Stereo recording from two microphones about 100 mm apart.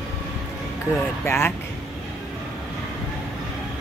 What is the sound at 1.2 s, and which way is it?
Speech, 25° left (ahead or behind).